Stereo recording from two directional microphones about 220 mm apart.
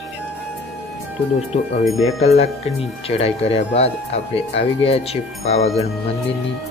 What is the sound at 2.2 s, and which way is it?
Speech, 30° left (ahead or behind).